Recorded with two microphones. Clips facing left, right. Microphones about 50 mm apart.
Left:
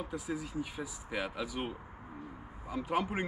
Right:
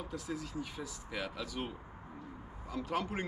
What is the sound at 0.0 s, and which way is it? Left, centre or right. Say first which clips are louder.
Speech: left 3 dB; centre.